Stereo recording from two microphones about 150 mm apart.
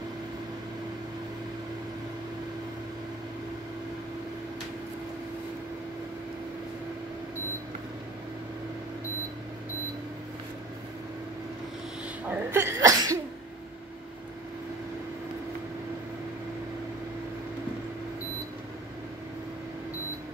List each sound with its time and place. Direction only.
12.3 s sneeze: 15° right (ahead or behind)